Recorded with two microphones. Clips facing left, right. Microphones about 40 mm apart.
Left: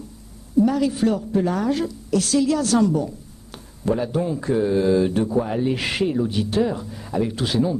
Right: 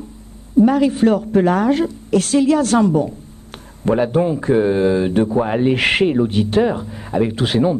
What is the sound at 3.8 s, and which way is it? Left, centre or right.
Speech, right.